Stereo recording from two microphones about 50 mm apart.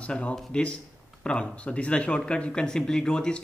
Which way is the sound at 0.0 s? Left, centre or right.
Left.